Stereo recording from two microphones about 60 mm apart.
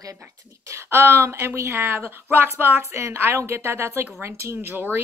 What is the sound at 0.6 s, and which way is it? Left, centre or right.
Speech, right.